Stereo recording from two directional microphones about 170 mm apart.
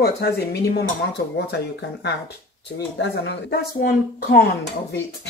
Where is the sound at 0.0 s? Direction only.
70° left (ahead or behind).